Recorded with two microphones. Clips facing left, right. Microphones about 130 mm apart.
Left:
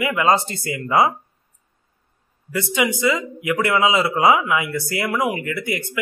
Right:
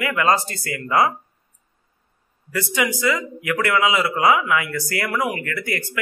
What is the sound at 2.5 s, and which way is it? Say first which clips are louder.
A man's voice: left 2 dB; 20° left (ahead or behind).